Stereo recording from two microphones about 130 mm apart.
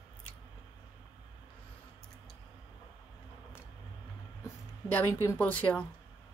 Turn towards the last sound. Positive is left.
turn(degrees=10)  # may be behind; listen again after turning